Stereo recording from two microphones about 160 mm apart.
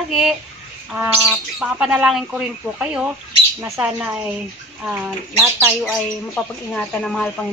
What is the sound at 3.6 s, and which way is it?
Speech, 15° right (ahead or behind).